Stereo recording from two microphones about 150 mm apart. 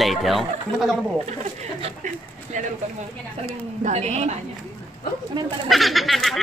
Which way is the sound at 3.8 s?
45° right (ahead or behind).